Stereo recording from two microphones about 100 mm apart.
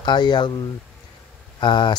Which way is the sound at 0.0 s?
50° left (ahead or behind).